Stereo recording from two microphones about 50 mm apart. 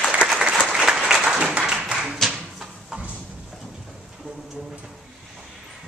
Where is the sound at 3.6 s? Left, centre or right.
Centre.